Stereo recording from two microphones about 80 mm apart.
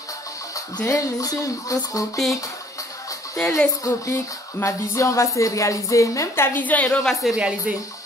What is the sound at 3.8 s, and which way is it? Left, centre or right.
A woman's voice, left.